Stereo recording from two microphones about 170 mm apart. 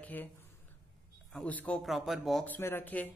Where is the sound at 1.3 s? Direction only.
10° left (ahead or behind).